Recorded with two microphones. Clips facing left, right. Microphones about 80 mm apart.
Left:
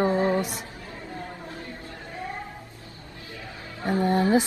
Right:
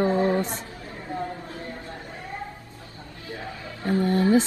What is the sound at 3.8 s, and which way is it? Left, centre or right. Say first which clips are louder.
Speech: right 1 dB; left.